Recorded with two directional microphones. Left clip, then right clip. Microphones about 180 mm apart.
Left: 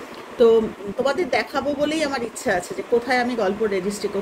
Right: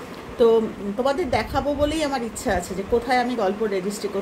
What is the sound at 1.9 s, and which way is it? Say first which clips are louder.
Speech: left 1 dB; 10° left (ahead or behind).